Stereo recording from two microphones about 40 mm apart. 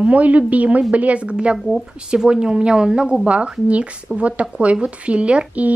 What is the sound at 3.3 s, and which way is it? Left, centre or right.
Speech, right.